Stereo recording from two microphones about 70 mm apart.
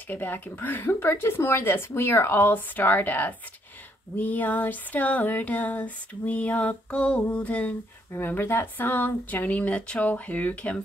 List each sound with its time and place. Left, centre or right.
0.1 s speech: left
4.2 s female singing: left
8.1 s female singing: left